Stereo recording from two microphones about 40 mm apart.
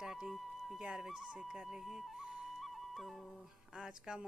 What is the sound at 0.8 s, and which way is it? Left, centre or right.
Speech, centre.